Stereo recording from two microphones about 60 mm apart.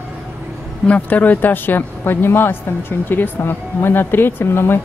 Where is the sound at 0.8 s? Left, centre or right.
Left.